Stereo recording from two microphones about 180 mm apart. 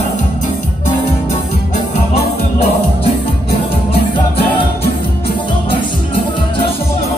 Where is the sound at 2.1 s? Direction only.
35° left (ahead or behind).